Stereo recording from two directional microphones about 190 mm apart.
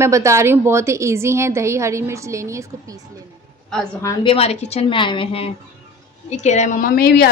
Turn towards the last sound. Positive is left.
turn(degrees=55)  # may be behind; listen again after turning